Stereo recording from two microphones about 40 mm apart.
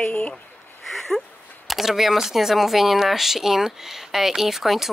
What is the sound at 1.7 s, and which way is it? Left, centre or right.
Speech, centre.